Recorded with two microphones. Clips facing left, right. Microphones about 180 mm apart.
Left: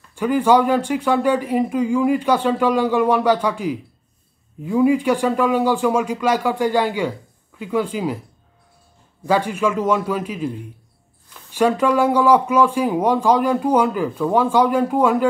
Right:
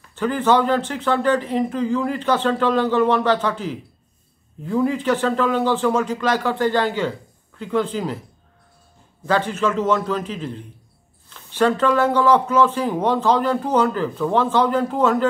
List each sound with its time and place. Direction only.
0.1 s speech: 10° left (ahead or behind)
9.2 s speech: 10° left (ahead or behind)